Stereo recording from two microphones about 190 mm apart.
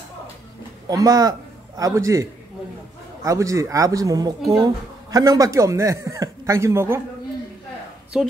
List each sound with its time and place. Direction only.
0.8 s a man's voice: 20° right (ahead or behind)
3.3 s speech: 15° right (ahead or behind)
8.1 s a woman's voice: 5° right (ahead or behind)